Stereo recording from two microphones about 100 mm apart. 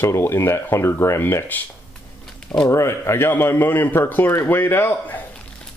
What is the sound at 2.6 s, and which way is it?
Speech, 25° left (ahead or behind).